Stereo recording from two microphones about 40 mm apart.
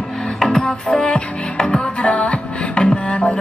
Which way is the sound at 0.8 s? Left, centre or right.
Left.